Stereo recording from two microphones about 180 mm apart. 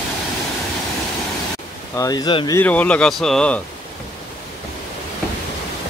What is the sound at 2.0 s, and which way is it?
Speech, 20° left (ahead or behind).